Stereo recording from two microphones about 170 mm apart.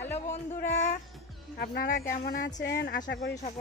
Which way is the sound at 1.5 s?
65° left (ahead or behind).